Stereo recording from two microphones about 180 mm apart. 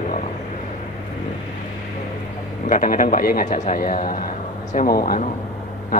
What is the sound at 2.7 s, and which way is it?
A man's voice, 50° left (ahead or behind).